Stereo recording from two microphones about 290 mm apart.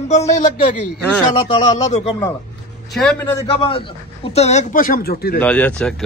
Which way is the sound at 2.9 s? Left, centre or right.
Centre.